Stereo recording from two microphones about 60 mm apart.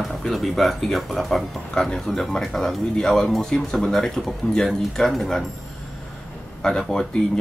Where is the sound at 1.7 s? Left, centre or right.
Centre.